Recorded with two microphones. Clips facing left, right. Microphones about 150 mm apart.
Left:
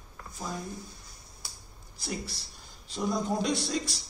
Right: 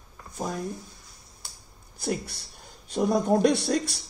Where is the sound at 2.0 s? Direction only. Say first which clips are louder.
Right 7 dB; 60° right (ahead or behind).